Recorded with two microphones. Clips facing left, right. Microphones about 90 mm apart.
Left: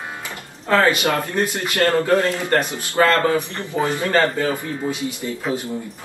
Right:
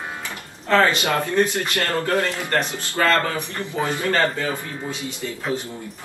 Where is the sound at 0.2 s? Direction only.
15° left (ahead or behind).